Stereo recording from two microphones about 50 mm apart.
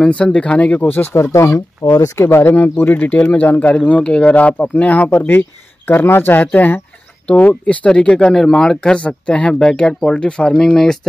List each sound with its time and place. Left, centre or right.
0.0 s speech: left
1.3 s speech: left
2.0 s speech: left
2.7 s speech: left
3.2 s speech: left
4.0 s speech: left
5.1 s speech: left; by 11.0 s centre